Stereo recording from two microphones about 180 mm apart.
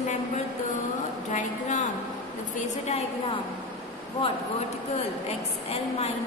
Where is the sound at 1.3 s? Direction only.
45° left (ahead or behind).